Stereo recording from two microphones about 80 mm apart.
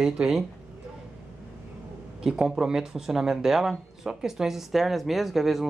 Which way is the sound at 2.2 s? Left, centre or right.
Centre.